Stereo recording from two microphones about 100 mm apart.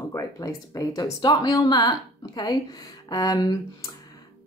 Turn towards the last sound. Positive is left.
turn(degrees=40)  # may be behind; listen again after turning